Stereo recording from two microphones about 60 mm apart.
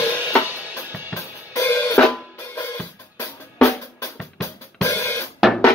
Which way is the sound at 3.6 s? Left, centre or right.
Left.